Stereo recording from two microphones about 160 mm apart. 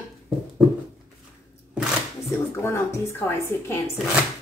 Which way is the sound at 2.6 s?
15° left (ahead or behind).